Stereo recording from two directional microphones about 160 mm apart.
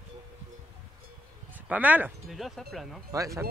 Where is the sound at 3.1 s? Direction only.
20° right (ahead or behind).